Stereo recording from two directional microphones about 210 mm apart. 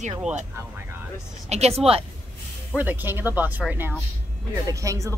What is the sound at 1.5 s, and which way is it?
Speech, 30° right (ahead or behind).